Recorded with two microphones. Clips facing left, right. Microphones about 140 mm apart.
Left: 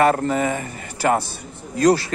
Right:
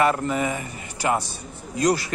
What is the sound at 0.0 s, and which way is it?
Speech, 45° left (ahead or behind).